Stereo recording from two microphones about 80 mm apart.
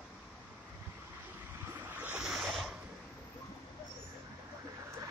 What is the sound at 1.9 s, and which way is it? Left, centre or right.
Waves, right.